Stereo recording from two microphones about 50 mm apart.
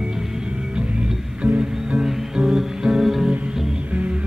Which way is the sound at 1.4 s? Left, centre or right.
Right.